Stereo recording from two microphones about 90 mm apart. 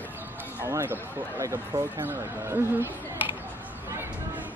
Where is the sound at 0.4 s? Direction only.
25° right (ahead or behind).